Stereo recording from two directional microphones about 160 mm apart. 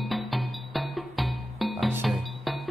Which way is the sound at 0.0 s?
Centre (ahead or behind).